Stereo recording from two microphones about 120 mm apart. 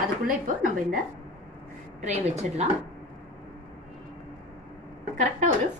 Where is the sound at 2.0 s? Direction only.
75° right (ahead or behind).